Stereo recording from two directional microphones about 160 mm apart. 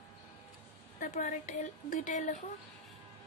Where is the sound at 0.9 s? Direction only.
55° left (ahead or behind).